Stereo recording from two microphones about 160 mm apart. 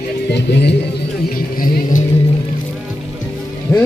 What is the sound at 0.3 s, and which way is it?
Speech, 90° left.